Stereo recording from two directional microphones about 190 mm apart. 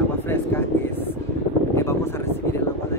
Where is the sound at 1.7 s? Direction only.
15° left (ahead or behind).